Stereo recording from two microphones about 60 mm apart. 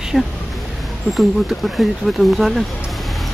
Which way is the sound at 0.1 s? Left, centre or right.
Centre.